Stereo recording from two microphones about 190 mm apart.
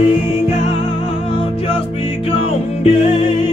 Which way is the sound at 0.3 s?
35° left (ahead or behind).